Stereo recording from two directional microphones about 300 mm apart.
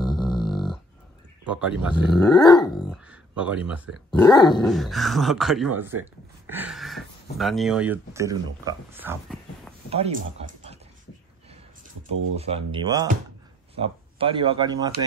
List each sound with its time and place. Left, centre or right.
0.0 s a sound: centre
1.5 s speech: centre
2.4 s dog: centre
2.9 s speech: centre
4.2 s dog: centre
4.6 s speech: centre
9.8 s speech: centre
12.4 s speech: centre